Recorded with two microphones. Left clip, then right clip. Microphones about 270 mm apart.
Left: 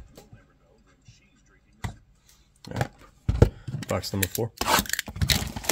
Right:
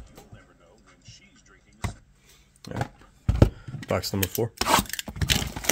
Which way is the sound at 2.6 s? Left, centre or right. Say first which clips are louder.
Left 1 dB; centre.